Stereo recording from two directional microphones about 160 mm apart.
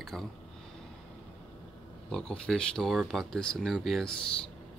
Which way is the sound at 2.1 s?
5° left (ahead or behind).